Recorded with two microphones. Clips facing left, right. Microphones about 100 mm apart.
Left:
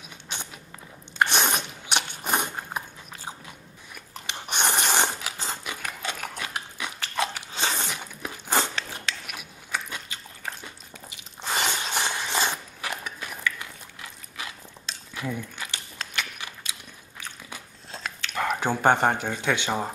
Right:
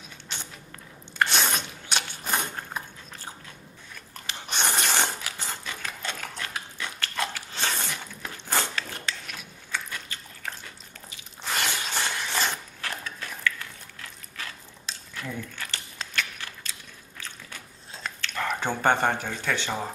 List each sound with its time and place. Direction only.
0.3 s biting: 15° left (ahead or behind)
11.6 s a sound: 15° left (ahead or behind)
14.4 s biting: 15° left (ahead or behind)
18.2 s speech: 10° left (ahead or behind)